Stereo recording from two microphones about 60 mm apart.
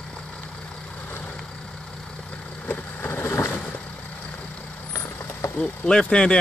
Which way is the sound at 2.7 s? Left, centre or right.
Left.